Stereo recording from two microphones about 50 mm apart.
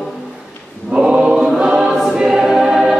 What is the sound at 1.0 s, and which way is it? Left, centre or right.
Choir, centre.